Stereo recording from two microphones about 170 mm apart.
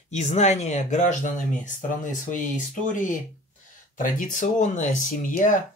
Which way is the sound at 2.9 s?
50° left (ahead or behind).